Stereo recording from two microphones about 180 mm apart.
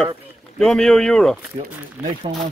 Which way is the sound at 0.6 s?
Centre (ahead or behind).